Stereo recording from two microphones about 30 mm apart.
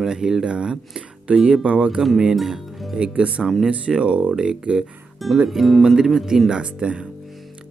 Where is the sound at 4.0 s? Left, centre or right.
Right.